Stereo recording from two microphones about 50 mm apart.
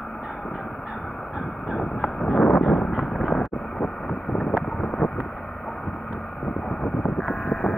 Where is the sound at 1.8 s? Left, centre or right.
Centre.